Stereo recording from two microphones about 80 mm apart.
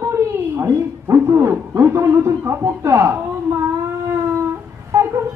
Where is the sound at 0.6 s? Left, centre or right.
Right.